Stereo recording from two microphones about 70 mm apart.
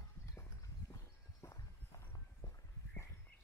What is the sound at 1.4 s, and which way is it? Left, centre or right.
Walk, left.